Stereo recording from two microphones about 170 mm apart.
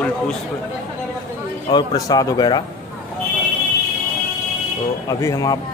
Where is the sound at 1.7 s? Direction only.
20° left (ahead or behind).